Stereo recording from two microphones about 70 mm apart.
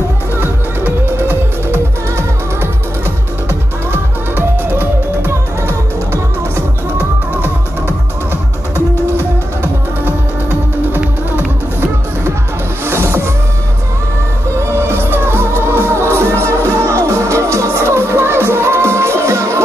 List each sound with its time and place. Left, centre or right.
0.4 s music: right
4.4 s music: right
12.8 s music: right
14.7 s music: right